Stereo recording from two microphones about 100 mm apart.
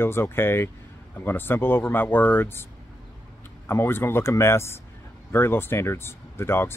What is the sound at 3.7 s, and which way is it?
Speech, 25° left (ahead or behind).